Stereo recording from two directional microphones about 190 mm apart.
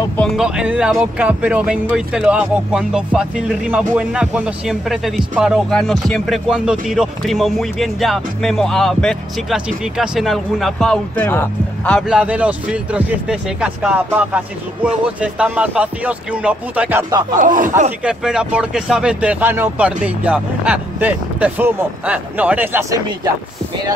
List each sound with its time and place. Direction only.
0.2 s speech: 5° right (ahead or behind)
12.1 s speech: 5° right (ahead or behind)
17.4 s speech: 45° right (ahead or behind)
18.0 s speech: 5° right (ahead or behind)